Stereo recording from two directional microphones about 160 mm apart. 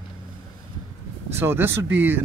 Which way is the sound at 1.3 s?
15° right (ahead or behind).